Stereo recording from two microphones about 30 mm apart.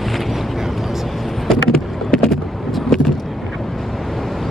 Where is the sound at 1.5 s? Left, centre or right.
Centre.